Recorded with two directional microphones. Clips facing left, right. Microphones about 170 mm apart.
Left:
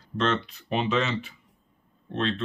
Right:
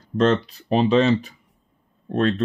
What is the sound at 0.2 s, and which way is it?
Speech, 40° right (ahead or behind).